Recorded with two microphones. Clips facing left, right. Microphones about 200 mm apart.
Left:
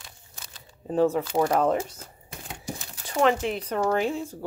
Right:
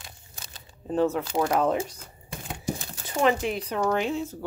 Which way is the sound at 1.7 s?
15° right (ahead or behind).